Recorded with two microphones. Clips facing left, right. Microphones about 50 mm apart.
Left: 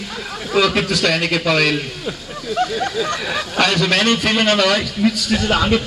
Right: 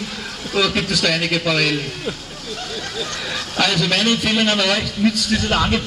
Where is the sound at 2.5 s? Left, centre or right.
Centre.